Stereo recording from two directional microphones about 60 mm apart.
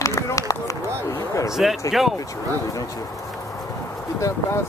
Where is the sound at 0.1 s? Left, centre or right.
Left.